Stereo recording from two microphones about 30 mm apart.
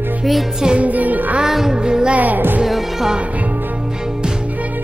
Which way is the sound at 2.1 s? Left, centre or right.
Right.